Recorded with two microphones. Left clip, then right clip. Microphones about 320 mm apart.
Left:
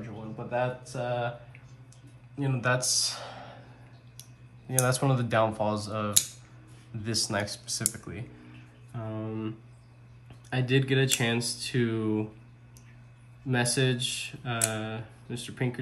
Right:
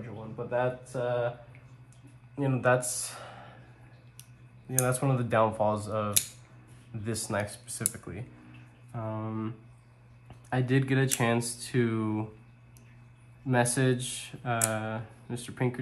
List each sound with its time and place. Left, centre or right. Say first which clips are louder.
0.5 s speech: even; centre
2.3 s speech: right 3 dB; centre
10.6 s speech: left 3 dB; centre
13.5 s speech: right 1 dB; centre